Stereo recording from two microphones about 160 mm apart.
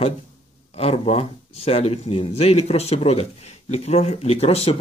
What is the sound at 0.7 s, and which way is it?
Speech, 40° left (ahead or behind).